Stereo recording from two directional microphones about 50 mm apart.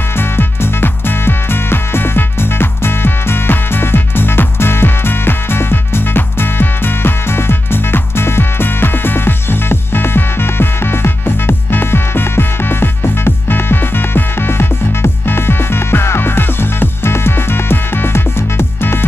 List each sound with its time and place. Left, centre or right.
0.2 s music: left